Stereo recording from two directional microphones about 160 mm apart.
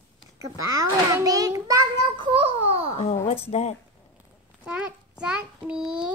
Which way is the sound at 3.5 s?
45° left (ahead or behind).